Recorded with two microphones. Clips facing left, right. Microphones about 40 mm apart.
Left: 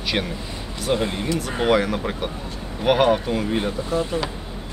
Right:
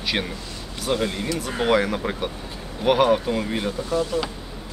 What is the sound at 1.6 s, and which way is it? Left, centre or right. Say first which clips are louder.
Speech: left 1 dB; centre.